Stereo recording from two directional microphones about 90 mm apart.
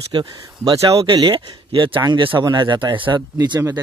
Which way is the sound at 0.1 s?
65° right (ahead or behind).